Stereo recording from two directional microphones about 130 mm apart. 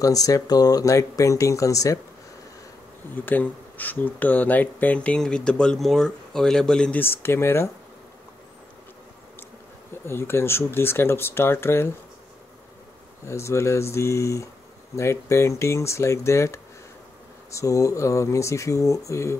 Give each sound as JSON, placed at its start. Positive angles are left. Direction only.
{"t": 0.0, "sound": "speech", "side_deg": 25}
{"t": 3.3, "sound": "speech", "side_deg": 15}
{"t": 7.0, "sound": "speech", "side_deg": 20}
{"t": 10.0, "sound": "speech", "side_deg": 20}
{"t": 13.2, "sound": "speech", "side_deg": 20}